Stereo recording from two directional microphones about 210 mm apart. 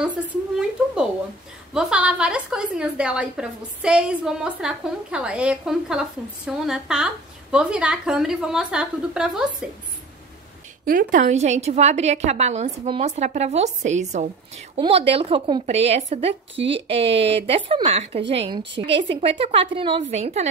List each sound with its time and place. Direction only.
0.0 s a woman's voice: 5° right (ahead or behind)
10.9 s a woman's voice: 40° right (ahead or behind)